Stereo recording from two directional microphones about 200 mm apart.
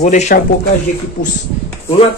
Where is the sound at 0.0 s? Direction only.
35° left (ahead or behind).